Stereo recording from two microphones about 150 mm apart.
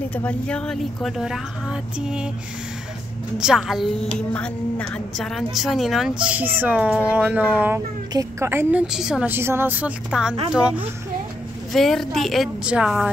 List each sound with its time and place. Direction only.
0.1 s a woman's voice: 10° left (ahead or behind); by 2.2 s 5° right (ahead or behind)
3.3 s a woman's voice: 5° right (ahead or behind)
4.3 s speech: 10° left (ahead or behind); by 8.8 s 15° right (ahead or behind)
8.8 s speech: 5° right (ahead or behind)
11.7 s a woman's voice: centre (ahead or behind)